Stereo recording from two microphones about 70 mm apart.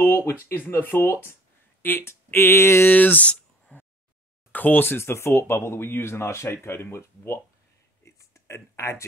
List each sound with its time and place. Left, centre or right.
0.0 s speech: left
2.9 s speech: left
8.0 s a sound: left